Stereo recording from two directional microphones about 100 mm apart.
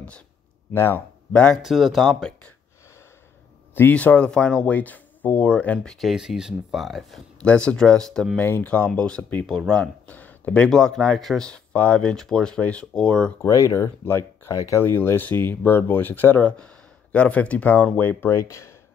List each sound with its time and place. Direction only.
0.7 s speech: 25° left (ahead or behind)
1.3 s speech: 10° left (ahead or behind)
1.6 s speech: centre (ahead or behind)
3.7 s speech: 15° left (ahead or behind)
5.9 s speech: 5° right (ahead or behind)
8.4 s speech: 15° left (ahead or behind)
13.5 s speech: 30° left (ahead or behind)
18.3 s speech: 30° left (ahead or behind)